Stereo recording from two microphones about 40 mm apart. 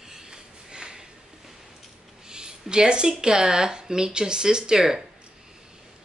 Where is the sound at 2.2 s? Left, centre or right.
Centre.